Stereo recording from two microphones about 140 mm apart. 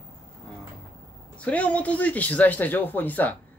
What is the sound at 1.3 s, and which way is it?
A man's voice, 10° left (ahead or behind).